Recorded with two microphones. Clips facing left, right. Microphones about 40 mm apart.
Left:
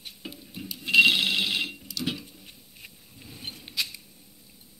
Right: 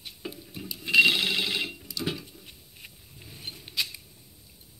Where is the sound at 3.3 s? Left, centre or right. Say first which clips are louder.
Left 1 dB; left.